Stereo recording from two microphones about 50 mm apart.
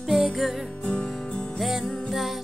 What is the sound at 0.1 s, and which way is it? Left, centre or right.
Music, centre.